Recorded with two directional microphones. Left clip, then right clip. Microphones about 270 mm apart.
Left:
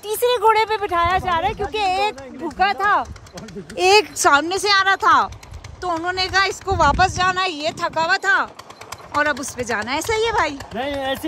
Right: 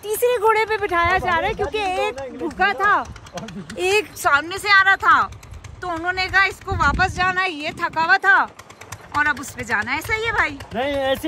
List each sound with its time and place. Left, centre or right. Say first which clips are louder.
0.0 s speech: left 1 dB; centre
3.7 s speech: left 5 dB; left
4.4 s speech: right 1 dB; centre